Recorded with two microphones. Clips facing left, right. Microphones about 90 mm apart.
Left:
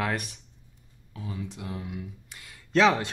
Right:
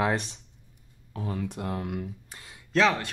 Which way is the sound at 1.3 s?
55° right (ahead or behind).